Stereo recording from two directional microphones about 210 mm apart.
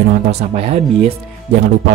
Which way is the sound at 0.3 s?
30° right (ahead or behind).